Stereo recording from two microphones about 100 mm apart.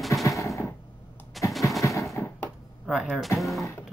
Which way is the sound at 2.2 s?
30° left (ahead or behind).